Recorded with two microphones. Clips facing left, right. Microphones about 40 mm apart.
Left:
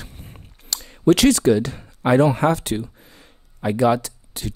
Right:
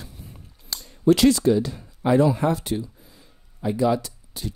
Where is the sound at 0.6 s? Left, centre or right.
Left.